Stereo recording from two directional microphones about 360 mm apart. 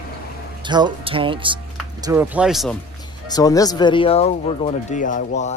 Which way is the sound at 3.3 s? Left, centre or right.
Centre.